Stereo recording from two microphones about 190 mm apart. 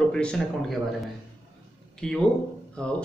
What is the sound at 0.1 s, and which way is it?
Speech, 5° left (ahead or behind).